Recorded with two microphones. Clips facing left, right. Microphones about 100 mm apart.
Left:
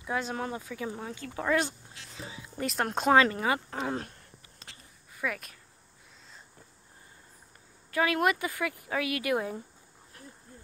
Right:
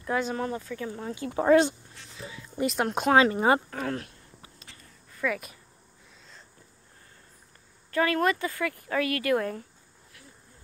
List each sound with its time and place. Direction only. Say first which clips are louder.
0.0 s speech: right 4 dB; centre (ahead or behind)
1.4 s speech: right 8 dB; 30° right (ahead or behind)
2.1 s speech: right 1 dB; 30° left (ahead or behind)
2.5 s speech: right 4 dB; 5° right (ahead or behind)
3.2 s speech: right 4 dB; 20° right (ahead or behind)
3.7 s speech: right 1 dB; 20° left (ahead or behind)
5.1 s a sound: right 5 dB; 5° left (ahead or behind)
7.9 s speech: right 2 dB; 10° left (ahead or behind)